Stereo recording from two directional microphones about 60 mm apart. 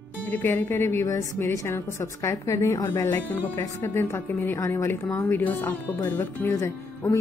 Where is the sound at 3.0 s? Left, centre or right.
Left.